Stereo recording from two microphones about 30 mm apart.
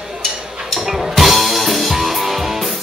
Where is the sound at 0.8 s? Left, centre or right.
Centre.